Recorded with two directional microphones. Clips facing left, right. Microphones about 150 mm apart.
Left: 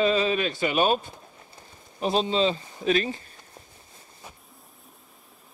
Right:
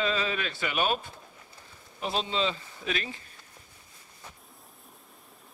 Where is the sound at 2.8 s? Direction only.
35° left (ahead or behind).